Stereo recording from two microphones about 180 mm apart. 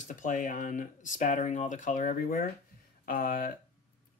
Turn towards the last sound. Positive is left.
turn(degrees=55)  # may be behind; listen again after turning